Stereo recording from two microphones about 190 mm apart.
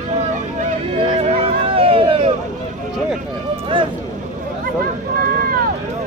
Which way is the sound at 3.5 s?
25° right (ahead or behind).